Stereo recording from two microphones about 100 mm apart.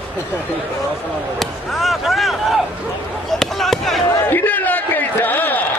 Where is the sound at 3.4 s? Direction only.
5° left (ahead or behind).